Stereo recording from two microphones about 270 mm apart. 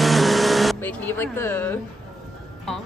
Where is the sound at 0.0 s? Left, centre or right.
Centre.